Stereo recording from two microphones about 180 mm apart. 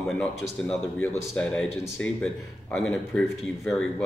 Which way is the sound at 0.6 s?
5° left (ahead or behind).